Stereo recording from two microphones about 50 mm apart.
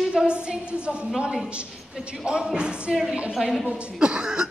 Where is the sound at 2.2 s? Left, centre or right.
Centre.